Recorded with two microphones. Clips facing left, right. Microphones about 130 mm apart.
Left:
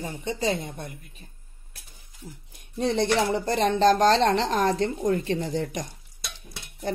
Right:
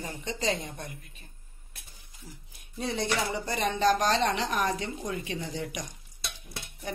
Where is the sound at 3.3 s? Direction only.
50° left (ahead or behind).